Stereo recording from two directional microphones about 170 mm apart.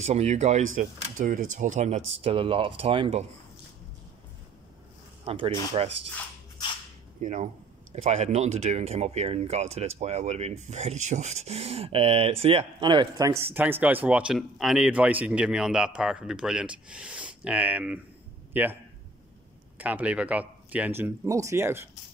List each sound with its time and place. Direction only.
0.0 s speech: 40° right (ahead or behind)
5.2 s speech: 30° right (ahead or behind)
7.2 s speech: 45° right (ahead or behind); by 18.8 s 10° right (ahead or behind)
19.8 s speech: 10° right (ahead or behind)